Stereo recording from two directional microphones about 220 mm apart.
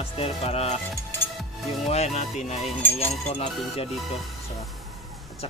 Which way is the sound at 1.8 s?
30° left (ahead or behind).